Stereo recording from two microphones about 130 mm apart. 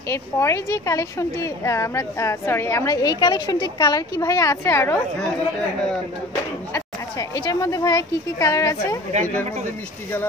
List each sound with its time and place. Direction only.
0.1 s speech: 20° left (ahead or behind)
6.7 s speech: 25° left (ahead or behind)